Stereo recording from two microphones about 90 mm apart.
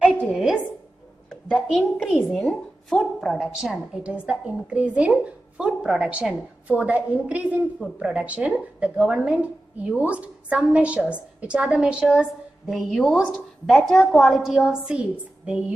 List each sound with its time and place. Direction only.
0.3 s a sound: 5° right (ahead or behind)
1.7 s a woman's voice: 5° right (ahead or behind)
12.6 s a woman's voice: centre (ahead or behind)